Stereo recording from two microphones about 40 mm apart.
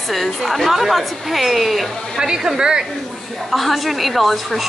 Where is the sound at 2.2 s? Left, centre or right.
Centre.